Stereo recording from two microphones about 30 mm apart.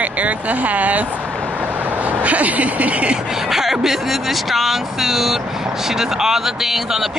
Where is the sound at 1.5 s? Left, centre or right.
Right.